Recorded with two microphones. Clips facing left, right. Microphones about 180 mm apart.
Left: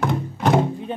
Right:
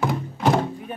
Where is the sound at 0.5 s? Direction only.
20° left (ahead or behind).